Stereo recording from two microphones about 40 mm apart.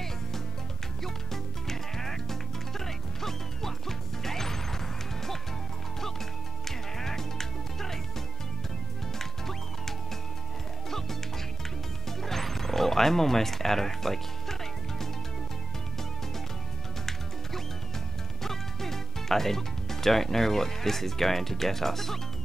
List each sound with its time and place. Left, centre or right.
1.0 s music: centre
6.6 s music: centre
9.2 s music: centre
12.2 s music: centre
18.4 s speech: centre